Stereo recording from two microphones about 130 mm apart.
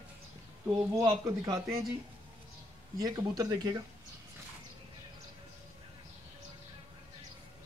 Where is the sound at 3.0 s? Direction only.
30° right (ahead or behind).